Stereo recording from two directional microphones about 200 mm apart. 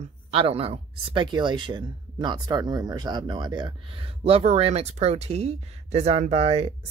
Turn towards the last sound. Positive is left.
turn(degrees=-30)  # may be behind; listen again after turning